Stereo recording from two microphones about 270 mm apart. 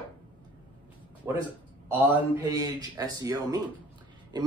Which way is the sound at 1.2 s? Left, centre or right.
Centre.